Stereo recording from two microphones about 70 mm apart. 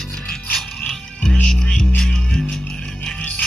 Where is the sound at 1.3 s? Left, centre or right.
Centre.